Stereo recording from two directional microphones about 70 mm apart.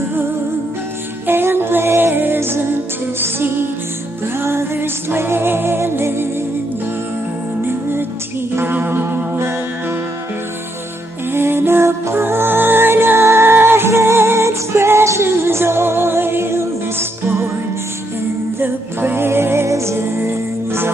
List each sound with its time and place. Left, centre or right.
1.2 s music: right
8.5 s music: right
11.3 s music: right
18.6 s music: right